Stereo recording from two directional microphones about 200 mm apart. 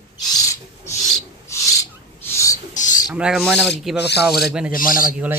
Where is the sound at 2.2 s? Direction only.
15° left (ahead or behind).